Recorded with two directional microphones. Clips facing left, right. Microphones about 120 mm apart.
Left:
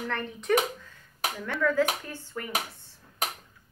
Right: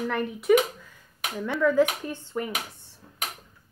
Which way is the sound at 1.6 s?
20° right (ahead or behind).